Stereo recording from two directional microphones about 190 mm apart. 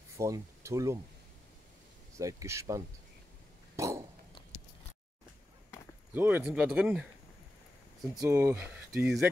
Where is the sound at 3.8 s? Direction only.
15° right (ahead or behind).